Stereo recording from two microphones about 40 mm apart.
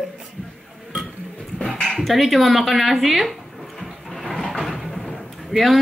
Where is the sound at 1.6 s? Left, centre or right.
Centre.